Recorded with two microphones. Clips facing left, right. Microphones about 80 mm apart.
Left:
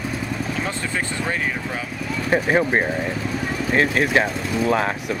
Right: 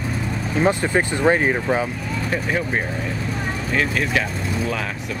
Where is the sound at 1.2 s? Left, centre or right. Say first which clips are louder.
Right 8 dB; right.